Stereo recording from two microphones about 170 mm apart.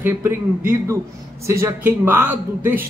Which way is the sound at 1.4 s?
15° right (ahead or behind).